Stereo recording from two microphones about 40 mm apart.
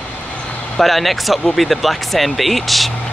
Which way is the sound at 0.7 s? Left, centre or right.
Centre.